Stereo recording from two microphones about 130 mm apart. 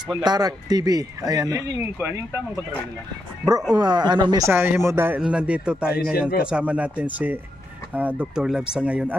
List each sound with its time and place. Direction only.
0.1 s speech: 30° right (ahead or behind)
1.8 s a man's voice: 15° right (ahead or behind)
3.7 s speech: 35° right (ahead or behind)
4.5 s a man's voice: 20° right (ahead or behind)